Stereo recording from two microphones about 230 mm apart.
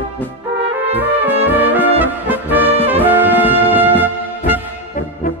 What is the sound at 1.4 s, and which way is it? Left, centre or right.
Brass instrument, centre.